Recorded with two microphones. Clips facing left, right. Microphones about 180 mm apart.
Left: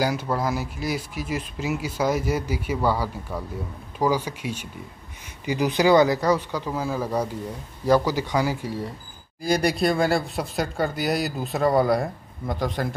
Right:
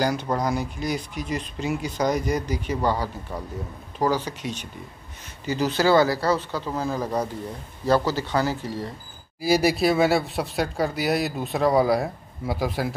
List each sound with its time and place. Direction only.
0.0 s speech: 5° left (ahead or behind)
9.4 s speech: 5° right (ahead or behind)